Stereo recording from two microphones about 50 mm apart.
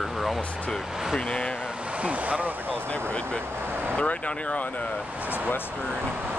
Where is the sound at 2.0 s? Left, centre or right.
Right.